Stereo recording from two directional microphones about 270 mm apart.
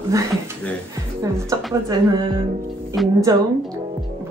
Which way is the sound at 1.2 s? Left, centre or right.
Centre.